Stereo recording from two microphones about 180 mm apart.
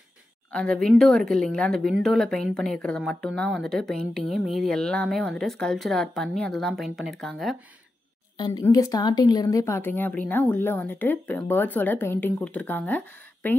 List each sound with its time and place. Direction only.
0.5 s speech: 5° left (ahead or behind)
8.4 s a woman's voice: 25° left (ahead or behind)